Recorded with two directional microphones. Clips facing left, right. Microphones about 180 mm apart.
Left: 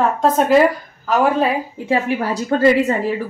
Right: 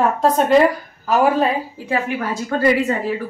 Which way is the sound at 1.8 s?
25° left (ahead or behind).